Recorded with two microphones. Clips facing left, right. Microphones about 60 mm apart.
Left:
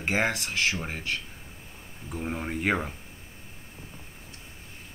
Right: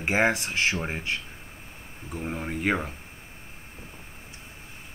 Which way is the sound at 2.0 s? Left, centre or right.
Centre.